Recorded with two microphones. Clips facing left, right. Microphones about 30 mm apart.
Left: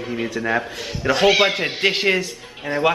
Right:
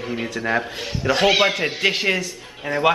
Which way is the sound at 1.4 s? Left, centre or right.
Centre.